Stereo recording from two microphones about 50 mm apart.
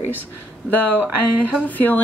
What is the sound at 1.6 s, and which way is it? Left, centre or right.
Speech, left.